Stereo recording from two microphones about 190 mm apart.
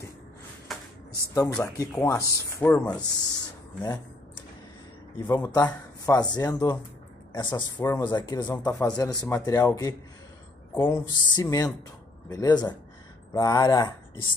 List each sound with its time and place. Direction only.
0.7 s a sound: centre (ahead or behind)
1.5 s speech: 15° left (ahead or behind)
3.0 s speech: 20° left (ahead or behind)
5.1 s speech: 20° left (ahead or behind)